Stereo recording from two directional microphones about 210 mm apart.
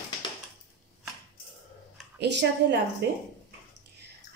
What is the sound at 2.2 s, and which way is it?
Speech, 55° right (ahead or behind).